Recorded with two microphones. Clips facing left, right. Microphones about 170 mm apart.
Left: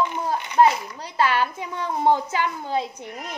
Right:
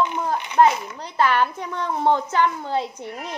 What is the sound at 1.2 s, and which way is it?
Speech, 55° right (ahead or behind).